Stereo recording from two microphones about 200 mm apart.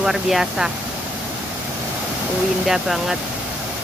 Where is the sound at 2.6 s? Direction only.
Centre (ahead or behind).